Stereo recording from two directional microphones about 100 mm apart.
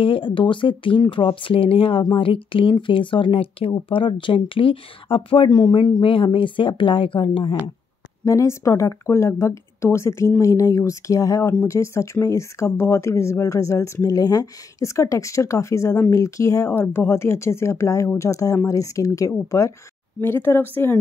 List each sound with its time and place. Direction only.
0.0 s speech: 60° left (ahead or behind)
5.5 s speech: 45° left (ahead or behind)
8.3 s speech: 30° left (ahead or behind)
16.7 s speech: 20° left (ahead or behind)
20.2 s speech: 25° left (ahead or behind)